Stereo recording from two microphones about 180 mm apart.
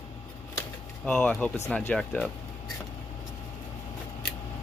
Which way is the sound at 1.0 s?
5° left (ahead or behind).